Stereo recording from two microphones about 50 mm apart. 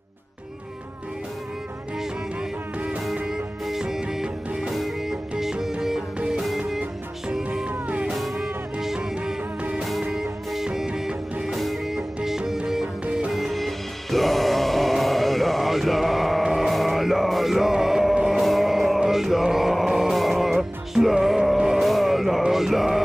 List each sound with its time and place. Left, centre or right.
3.8 s music: centre
8.1 s music: centre
8.8 s music: centre
10.5 s music: centre
11.4 s music: centre
13.0 s music: right
13.3 s music: centre